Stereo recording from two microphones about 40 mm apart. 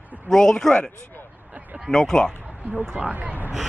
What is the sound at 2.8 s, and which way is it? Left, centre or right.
Speech, centre.